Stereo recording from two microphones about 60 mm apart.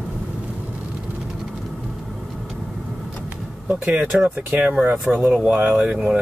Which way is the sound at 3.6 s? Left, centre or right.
Right.